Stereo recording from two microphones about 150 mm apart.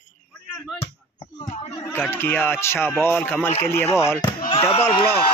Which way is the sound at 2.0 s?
15° left (ahead or behind).